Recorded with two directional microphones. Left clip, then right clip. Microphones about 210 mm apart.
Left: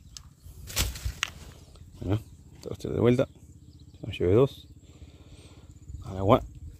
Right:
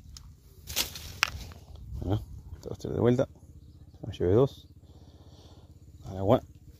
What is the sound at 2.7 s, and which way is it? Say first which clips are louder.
Speech: left 2 dB; 10° left (ahead or behind).